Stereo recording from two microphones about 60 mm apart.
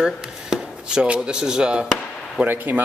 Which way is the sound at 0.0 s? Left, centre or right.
Centre.